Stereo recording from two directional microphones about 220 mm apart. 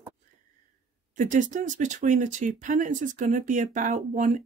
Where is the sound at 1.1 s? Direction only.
35° right (ahead or behind).